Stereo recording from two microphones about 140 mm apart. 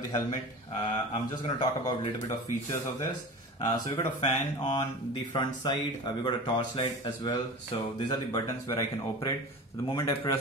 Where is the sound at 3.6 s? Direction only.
30° left (ahead or behind).